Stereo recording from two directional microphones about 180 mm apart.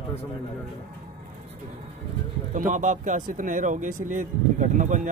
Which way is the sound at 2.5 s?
45° right (ahead or behind).